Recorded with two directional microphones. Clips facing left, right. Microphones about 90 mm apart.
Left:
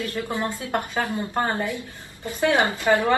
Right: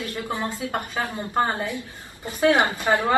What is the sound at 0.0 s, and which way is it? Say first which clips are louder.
A woman's voice: left 1 dB; 20° right (ahead or behind).